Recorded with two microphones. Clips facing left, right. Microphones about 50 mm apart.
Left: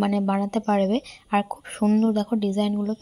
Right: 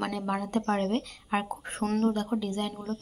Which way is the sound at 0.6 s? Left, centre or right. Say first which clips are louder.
Left 6 dB; left.